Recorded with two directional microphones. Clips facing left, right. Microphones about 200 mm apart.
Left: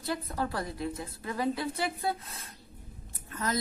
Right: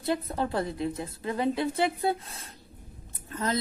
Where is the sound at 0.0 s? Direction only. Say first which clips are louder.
Right 4 dB; 25° right (ahead or behind).